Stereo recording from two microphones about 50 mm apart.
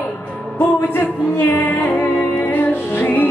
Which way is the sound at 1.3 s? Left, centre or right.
Left.